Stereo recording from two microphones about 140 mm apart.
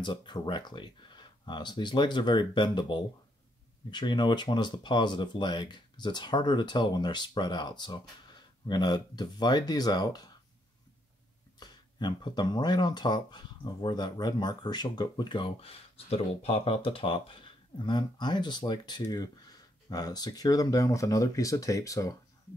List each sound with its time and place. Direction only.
0.0 s speech: 35° left (ahead or behind)
11.6 s speech: 35° left (ahead or behind)